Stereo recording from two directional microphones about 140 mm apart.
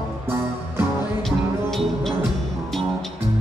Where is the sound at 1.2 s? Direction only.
5° left (ahead or behind).